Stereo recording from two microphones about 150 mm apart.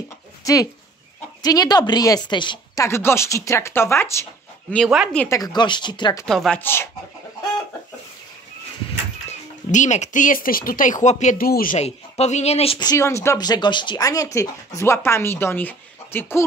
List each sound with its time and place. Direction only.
0.4 s chicken: 20° left (ahead or behind)
1.4 s speech: 25° left (ahead or behind)
4.8 s speech: 5° right (ahead or behind)
5.3 s speech: 25° left (ahead or behind)
6.2 s speech: centre (ahead or behind)
6.6 s speech: 15° left (ahead or behind)
9.3 s speech: 50° left (ahead or behind)
11.3 s speech: 80° left
11.8 s speech: 45° left (ahead or behind)
12.7 s speech: 25° left (ahead or behind)